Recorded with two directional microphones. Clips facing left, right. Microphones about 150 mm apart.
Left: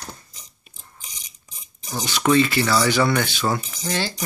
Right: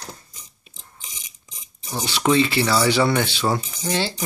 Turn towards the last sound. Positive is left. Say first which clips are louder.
# right 2 dB
turn(degrees=-25)  # may be behind; listen again after turning